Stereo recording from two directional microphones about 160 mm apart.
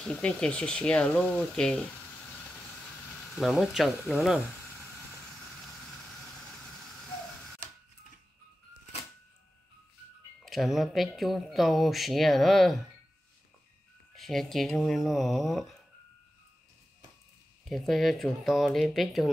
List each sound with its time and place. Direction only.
0.1 s speech: 5° left (ahead or behind)
3.3 s speech: centre (ahead or behind)
10.4 s speech: centre (ahead or behind)
14.1 s speech: centre (ahead or behind)
17.6 s speech: centre (ahead or behind)